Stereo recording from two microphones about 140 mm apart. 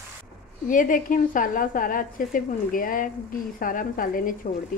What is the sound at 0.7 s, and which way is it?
A woman's voice, 70° left (ahead or behind).